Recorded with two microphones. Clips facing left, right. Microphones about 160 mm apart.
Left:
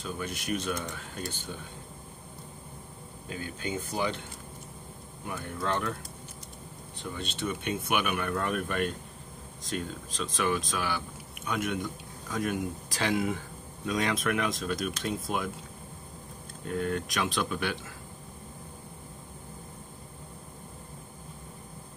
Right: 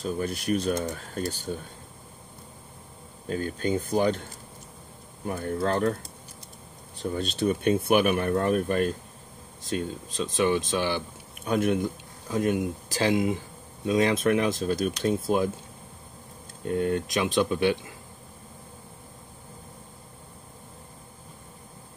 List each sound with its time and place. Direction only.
0.0 s speech: 35° right (ahead or behind)
3.3 s speech: 45° right (ahead or behind)
5.2 s speech: 45° right (ahead or behind)
7.0 s speech: 40° right (ahead or behind)
16.6 s speech: 25° right (ahead or behind)